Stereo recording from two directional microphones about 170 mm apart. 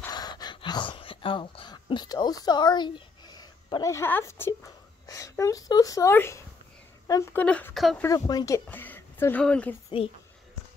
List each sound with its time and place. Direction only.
0.1 s speech: 25° left (ahead or behind)
7.4 s speech: 5° left (ahead or behind)
8.0 s speech: 20° left (ahead or behind)
9.8 s a woman's voice: 35° left (ahead or behind)